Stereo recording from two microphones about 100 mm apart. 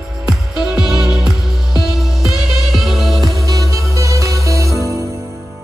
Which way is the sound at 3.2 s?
35° right (ahead or behind).